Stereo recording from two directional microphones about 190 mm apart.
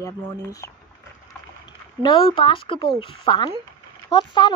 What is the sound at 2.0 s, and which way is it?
A woman's voice, 25° left (ahead or behind).